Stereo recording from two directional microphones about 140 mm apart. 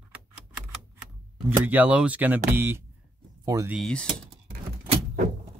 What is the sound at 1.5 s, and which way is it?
Speech, 15° right (ahead or behind).